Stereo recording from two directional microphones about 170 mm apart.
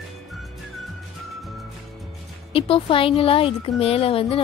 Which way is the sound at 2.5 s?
30° left (ahead or behind).